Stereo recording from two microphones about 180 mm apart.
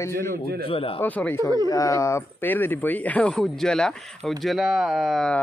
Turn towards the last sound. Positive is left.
turn(degrees=0)  # may be behind; listen again after turning